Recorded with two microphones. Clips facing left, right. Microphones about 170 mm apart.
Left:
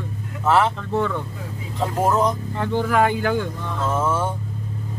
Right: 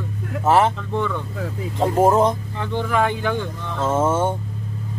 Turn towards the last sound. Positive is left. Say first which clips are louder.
# right 3 dB
turn(degrees=-25)  # may be behind; listen again after turning